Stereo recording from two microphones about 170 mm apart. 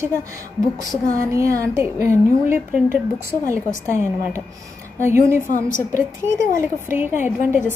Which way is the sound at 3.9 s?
15° right (ahead or behind).